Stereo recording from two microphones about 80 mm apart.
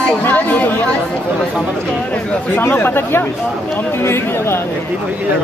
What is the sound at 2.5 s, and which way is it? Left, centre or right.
Speech, left.